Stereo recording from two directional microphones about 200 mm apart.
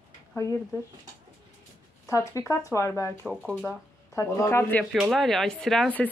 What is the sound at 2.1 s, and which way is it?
Speech, 15° left (ahead or behind).